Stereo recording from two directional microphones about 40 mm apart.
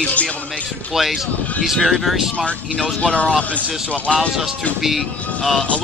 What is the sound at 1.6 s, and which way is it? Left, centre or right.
Speech, centre.